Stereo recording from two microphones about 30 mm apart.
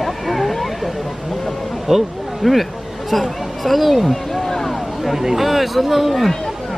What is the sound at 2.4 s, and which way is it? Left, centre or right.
Speech, centre.